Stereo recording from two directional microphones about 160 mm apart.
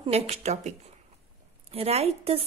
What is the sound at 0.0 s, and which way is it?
Speech, 40° right (ahead or behind).